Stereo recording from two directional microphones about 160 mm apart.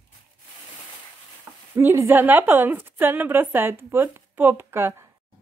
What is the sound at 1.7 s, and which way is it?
A woman's voice, 15° right (ahead or behind).